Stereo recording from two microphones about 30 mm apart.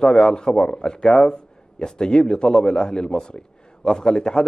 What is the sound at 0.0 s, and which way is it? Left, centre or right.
A man's voice, left.